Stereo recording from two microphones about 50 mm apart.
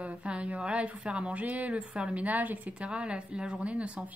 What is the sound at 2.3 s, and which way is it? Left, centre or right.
A woman's voice, right.